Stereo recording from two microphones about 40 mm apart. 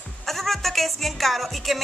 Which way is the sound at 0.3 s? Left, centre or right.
Centre.